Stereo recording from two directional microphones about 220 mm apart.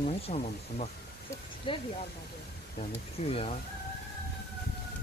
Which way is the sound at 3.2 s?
25° left (ahead or behind).